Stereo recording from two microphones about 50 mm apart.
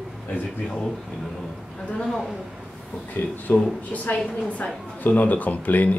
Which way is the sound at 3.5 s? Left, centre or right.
Left.